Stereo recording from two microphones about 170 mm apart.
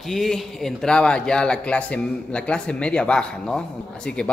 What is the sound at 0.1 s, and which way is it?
A man's voice, centre (ahead or behind).